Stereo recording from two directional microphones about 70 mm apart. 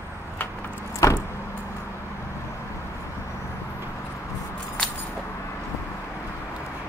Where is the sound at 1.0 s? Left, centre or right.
Left.